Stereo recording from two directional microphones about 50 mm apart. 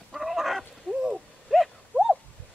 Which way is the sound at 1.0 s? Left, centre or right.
Centre.